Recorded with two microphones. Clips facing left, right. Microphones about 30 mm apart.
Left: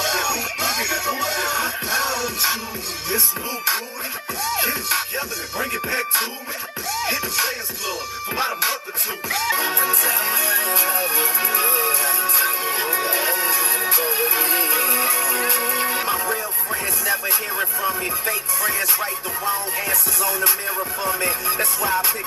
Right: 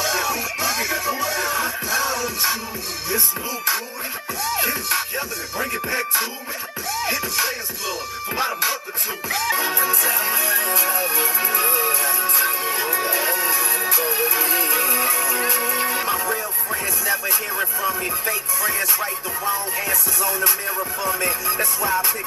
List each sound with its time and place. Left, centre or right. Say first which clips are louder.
0.0 s music: even; left
4.5 s music: even; left
6.9 s music: even; left
9.3 s music: even; left
13.2 s music: even; left
15.0 s music: even; left
16.0 s music: even; centre
17.6 s a sound: even; centre
18.3 s music: even; left
19.5 s music: even; left
21.5 s music: even; centre